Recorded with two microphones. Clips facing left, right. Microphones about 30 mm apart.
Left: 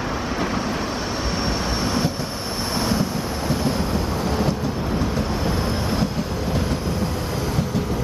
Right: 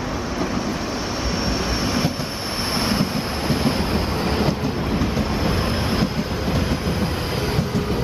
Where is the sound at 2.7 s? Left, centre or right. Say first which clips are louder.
Right 1 dB; right.